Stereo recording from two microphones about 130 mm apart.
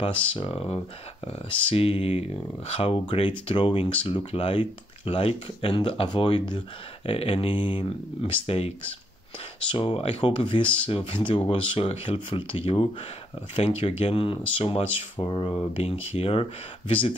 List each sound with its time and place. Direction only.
0.3 s speech: 45° left (ahead or behind)